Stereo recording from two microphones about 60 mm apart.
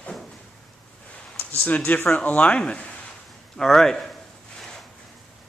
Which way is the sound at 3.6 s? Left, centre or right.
Centre.